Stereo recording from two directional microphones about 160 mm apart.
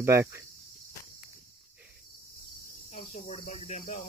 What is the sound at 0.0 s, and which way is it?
Speech, 15° right (ahead or behind).